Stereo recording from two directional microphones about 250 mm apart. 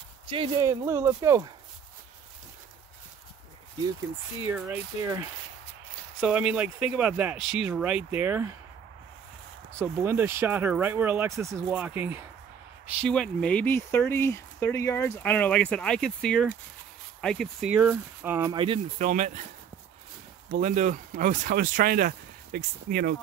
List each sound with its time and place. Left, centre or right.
0.3 s speech: centre
4.4 s speech: centre
9.8 s speech: centre
18.6 s speech: right
20.5 s speech: right